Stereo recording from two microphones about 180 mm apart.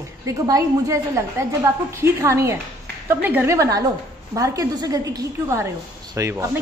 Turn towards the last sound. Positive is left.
turn(degrees=-15)  # may be behind; listen again after turning